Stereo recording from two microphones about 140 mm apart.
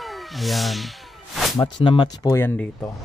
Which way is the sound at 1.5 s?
35° left (ahead or behind).